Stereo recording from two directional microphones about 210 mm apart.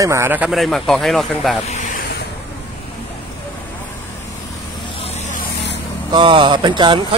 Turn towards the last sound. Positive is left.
turn(degrees=-20)  # may be behind; listen again after turning